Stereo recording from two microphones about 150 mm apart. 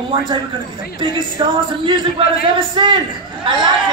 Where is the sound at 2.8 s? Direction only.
35° right (ahead or behind).